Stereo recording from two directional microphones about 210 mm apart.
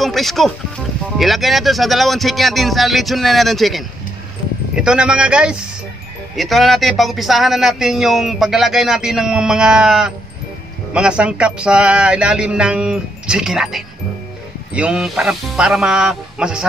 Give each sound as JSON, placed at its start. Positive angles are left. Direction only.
{"t": 0.0, "sound": "speech", "side_deg": 0}